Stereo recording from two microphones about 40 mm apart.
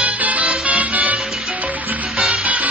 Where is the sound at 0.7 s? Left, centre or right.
Right.